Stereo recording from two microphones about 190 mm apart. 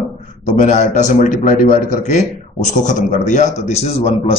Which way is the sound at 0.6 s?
40° left (ahead or behind).